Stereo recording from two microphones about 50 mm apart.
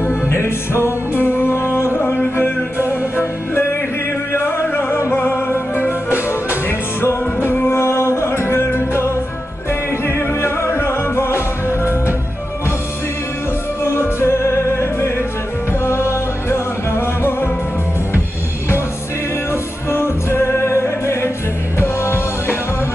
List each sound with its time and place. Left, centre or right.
0.8 s music: left
2.0 s music: left
5.1 s music: left
7.4 s music: left
7.8 s music: left
13.8 s music: left
14.3 s music: left
19.5 s music: left
21.7 s music: left